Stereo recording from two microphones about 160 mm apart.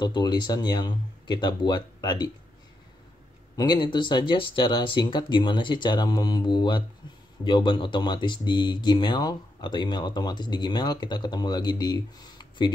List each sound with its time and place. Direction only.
0.0 s speech: 25° left (ahead or behind)
3.5 s speech: 25° left (ahead or behind)